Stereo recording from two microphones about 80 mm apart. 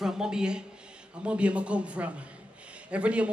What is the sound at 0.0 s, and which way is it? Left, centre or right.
A man's voice, centre.